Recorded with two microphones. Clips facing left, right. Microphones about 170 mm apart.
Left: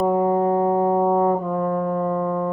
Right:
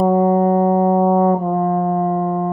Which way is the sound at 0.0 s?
40° right (ahead or behind).